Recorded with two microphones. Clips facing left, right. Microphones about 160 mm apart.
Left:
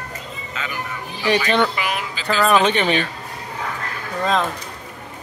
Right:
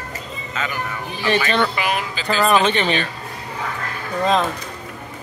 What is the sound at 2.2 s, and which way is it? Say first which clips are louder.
Speech: even; 10° right (ahead or behind).